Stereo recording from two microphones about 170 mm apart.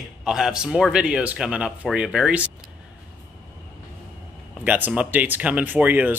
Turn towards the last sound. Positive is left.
turn(degrees=-10)  # may be behind; listen again after turning